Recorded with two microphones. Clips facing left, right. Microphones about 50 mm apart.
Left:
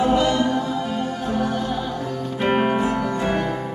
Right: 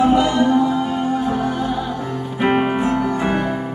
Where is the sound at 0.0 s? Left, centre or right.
Centre.